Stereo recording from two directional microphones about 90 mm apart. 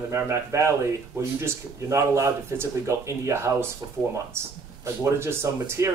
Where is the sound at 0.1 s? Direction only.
30° right (ahead or behind).